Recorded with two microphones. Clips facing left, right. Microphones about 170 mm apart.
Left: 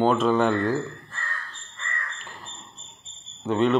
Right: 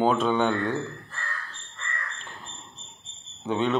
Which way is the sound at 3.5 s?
Centre (ahead or behind).